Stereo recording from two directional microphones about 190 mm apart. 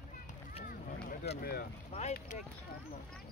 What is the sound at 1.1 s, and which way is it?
Vehicle, 55° left (ahead or behind).